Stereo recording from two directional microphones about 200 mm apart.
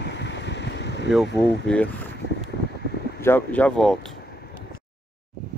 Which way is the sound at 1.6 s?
5° left (ahead or behind).